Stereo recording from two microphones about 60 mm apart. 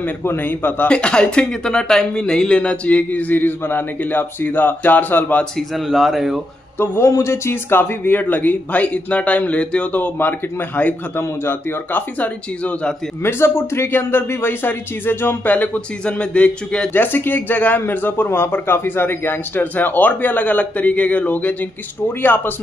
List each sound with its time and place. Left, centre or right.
0.2 s speech: left
0.8 s speech: centre
5.8 s speech: centre
7.1 s speech: left
7.7 s speech: left
13.2 s speech: left; by 16.9 s centre
16.9 s speech: left